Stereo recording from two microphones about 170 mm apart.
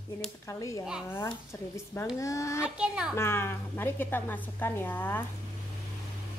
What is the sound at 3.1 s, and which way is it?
A woman's voice, 15° left (ahead or behind).